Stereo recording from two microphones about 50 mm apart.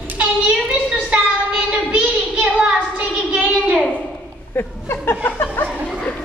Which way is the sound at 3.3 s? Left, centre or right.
Right.